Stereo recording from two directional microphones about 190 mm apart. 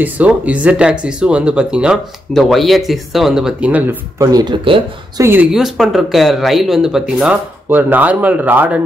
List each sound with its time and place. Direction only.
0.0 s speech: 5° right (ahead or behind)